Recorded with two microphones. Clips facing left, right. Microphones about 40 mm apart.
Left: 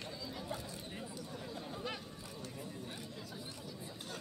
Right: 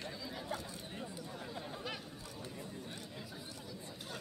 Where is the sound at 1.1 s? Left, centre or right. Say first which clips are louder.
Even; centre.